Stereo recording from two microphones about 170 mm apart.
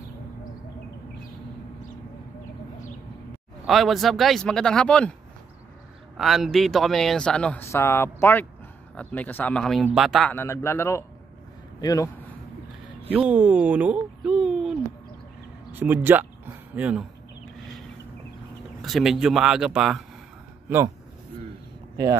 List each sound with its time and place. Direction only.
3.6 s speech: centre (ahead or behind)
6.1 s speech: centre (ahead or behind)
10.3 s a man's voice: 15° left (ahead or behind)
13.1 s speech: 5° right (ahead or behind)
15.7 s a sound: 10° right (ahead or behind)
18.8 s speech: centre (ahead or behind)
20.6 s speech: 15° right (ahead or behind)